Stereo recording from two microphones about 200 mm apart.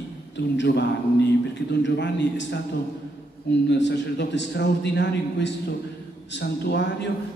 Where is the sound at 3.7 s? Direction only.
60° left (ahead or behind).